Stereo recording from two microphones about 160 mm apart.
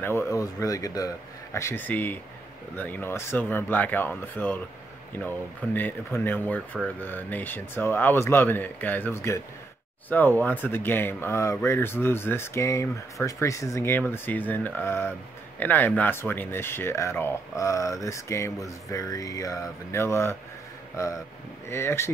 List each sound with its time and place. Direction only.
0.0 s speech: 15° left (ahead or behind)